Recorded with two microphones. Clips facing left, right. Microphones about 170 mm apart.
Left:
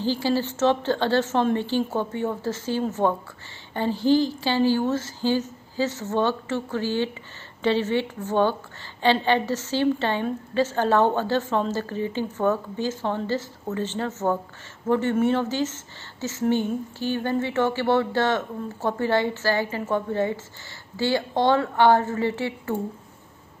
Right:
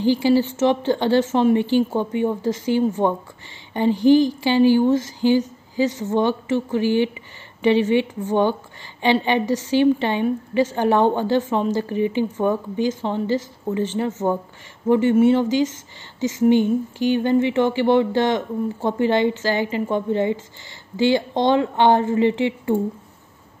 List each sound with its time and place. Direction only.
0.0 s speech: 15° right (ahead or behind)